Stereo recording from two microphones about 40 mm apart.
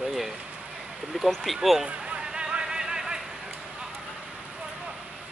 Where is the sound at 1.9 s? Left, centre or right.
Right.